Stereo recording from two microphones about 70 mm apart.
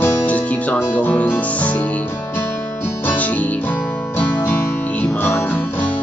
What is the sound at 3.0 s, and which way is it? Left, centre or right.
Music, left.